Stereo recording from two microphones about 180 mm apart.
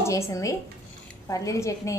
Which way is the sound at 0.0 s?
15° left (ahead or behind).